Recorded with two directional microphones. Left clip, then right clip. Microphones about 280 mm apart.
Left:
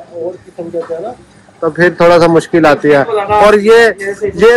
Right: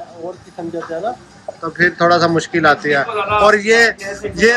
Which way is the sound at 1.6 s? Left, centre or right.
Centre.